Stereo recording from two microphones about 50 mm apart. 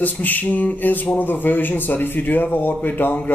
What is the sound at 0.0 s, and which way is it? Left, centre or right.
Speech, left.